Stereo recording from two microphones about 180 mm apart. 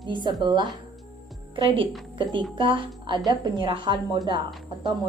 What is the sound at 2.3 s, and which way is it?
A woman's voice, 30° right (ahead or behind).